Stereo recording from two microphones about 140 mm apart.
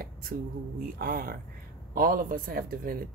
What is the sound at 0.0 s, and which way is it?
Speech, 90° right.